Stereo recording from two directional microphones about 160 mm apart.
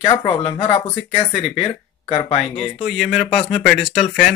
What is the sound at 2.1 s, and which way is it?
Speech, 40° left (ahead or behind).